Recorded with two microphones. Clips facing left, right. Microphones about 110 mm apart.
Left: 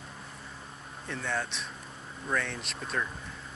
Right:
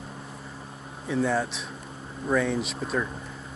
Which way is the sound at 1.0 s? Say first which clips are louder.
Right 9 dB; 5° right (ahead or behind).